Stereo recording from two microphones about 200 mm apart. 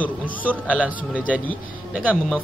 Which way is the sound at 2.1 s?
5° left (ahead or behind).